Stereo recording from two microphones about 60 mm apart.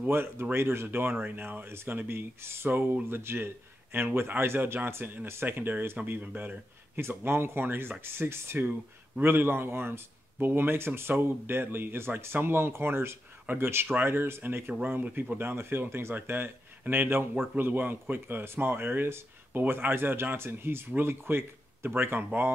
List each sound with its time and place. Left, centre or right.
0.1 s speech: right
7.0 s speech: right
14.7 s speech: right
15.3 s speech: right